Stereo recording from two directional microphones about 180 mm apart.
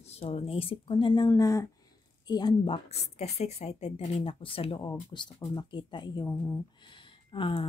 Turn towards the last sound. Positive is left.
turn(degrees=30)  # may be behind; listen again after turning